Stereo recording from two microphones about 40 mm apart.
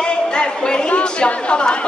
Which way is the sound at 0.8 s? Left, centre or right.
Left.